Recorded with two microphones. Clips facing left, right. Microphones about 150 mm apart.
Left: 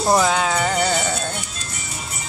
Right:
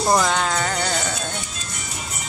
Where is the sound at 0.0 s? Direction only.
5° left (ahead or behind).